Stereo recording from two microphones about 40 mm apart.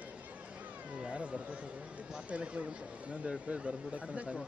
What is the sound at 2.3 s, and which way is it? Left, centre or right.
Speech, right.